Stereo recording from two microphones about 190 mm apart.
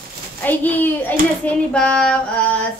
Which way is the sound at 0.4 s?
10° left (ahead or behind).